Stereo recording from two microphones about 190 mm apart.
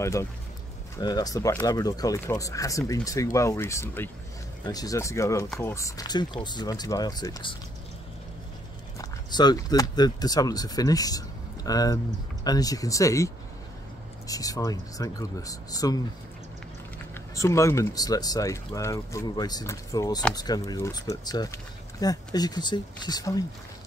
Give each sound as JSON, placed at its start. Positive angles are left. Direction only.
{"t": 0.0, "sound": "speech", "side_deg": 15}
{"t": 8.9, "sound": "speech", "side_deg": 20}
{"t": 17.4, "sound": "speech", "side_deg": 15}